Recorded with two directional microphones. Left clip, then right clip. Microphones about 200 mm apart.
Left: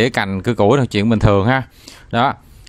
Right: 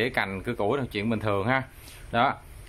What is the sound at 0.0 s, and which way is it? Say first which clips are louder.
Speech: left 10 dB; 50° left (ahead or behind).